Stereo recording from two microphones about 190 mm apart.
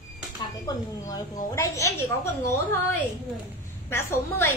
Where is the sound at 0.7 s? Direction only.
20° left (ahead or behind).